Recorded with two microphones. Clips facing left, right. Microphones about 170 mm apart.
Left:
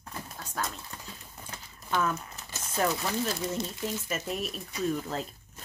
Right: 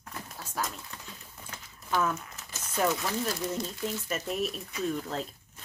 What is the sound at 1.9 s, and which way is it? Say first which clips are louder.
Speech: even; 5° right (ahead or behind).